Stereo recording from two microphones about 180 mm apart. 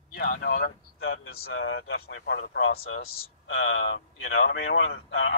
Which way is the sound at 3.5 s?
90° left.